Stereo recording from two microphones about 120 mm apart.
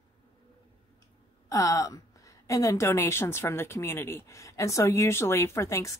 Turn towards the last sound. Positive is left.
turn(degrees=25)  # may be behind; listen again after turning